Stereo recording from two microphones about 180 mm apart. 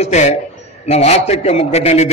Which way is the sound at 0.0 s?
40° left (ahead or behind).